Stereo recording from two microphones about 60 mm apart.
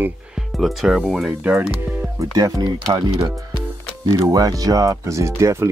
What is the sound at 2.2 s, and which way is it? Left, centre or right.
Speech, right.